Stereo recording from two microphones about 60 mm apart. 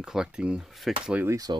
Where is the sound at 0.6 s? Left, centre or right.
Centre.